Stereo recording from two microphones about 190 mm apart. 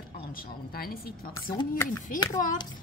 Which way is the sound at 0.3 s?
50° left (ahead or behind).